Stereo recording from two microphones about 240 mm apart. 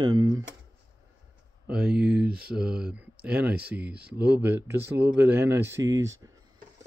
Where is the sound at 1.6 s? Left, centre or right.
Centre.